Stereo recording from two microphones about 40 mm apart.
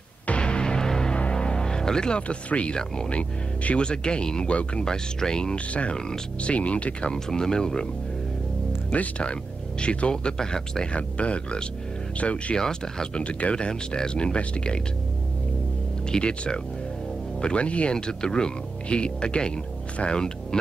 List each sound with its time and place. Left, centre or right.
0.3 s music: left
2.2 s speech: left
5.7 s speech: left
5.9 s speech: centre
6.5 s speech: left
7.1 s speech: centre
8.9 s speech: left
10.3 s speech: centre
11.0 s speech: left
12.5 s speech: centre
13.1 s speech: left
16.1 s speech: left
17.9 s speech: left